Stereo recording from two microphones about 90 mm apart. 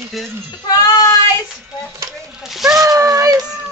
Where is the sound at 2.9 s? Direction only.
35° right (ahead or behind).